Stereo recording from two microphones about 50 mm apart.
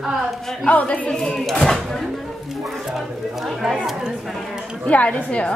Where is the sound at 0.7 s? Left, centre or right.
Left.